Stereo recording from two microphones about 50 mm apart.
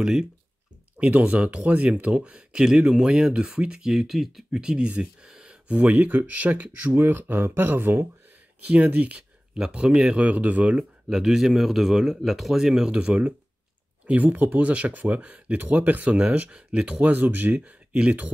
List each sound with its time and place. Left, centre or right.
0.0 s speech: centre
0.9 s speech: right; by 4.5 s centre
4.5 s speech: centre
6.7 s speech: right
8.6 s speech: right
10.2 s speech: right
11.1 s speech: centre
12.9 s speech: right
14.0 s speech: right
17.6 s speech: right